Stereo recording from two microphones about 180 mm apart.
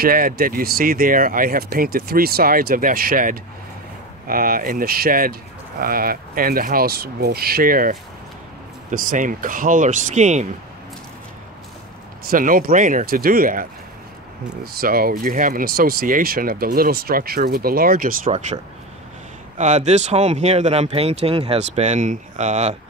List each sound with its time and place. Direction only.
0.0 s speech: 55° right (ahead or behind)
12.3 s speech: 50° right (ahead or behind)
18.3 s speech: 40° right (ahead or behind)
19.6 s speech: 40° right (ahead or behind)